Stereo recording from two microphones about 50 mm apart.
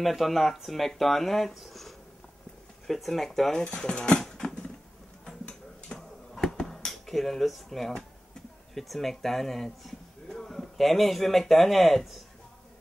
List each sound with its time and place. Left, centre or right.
0.0 s speech: centre
3.6 s cutlery: centre
4.2 s patter: centre
5.9 s a sound: centre
8.7 s speech: centre